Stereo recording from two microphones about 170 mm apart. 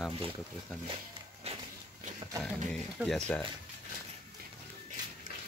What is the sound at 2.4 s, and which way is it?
Speech, 5° left (ahead or behind).